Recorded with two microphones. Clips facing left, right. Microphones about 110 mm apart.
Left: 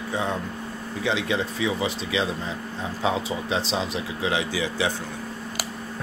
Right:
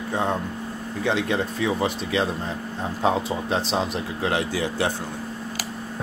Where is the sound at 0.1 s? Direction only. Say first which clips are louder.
Right 3 dB; 50° right (ahead or behind).